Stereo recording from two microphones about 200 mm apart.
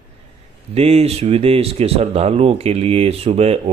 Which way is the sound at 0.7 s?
30° right (ahead or behind).